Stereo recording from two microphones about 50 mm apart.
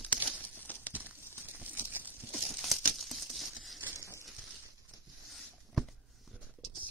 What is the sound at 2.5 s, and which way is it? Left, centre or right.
Crumpling, centre.